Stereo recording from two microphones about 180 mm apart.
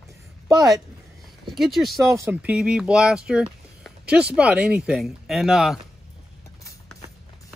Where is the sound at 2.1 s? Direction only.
15° right (ahead or behind).